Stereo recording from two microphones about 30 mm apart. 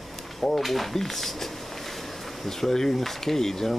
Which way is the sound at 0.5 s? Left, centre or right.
Centre.